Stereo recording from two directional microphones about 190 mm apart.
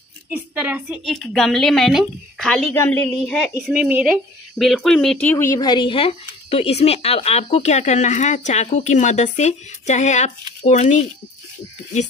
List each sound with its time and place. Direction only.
0.3 s a woman's voice: 10° right (ahead or behind)
3.7 s a woman's voice: 5° right (ahead or behind); by 11.1 s 40° left (ahead or behind)